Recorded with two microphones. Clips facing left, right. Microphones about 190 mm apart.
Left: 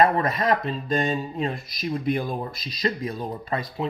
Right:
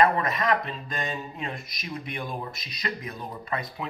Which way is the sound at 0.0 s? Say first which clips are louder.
Left 3 dB; 35° left (ahead or behind).